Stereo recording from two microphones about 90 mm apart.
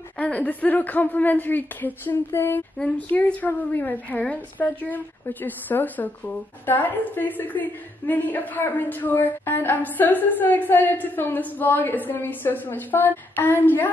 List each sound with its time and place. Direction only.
0.2 s a woman's voice: 15° left (ahead or behind)